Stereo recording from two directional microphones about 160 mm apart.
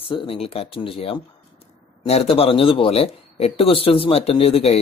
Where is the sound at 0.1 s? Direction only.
35° left (ahead or behind).